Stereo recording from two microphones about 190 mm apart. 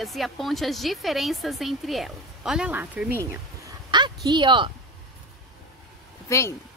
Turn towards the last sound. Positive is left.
turn(degrees=15)  # may be behind; listen again after turning